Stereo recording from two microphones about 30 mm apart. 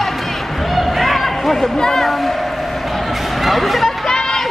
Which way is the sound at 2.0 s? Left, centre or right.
Centre.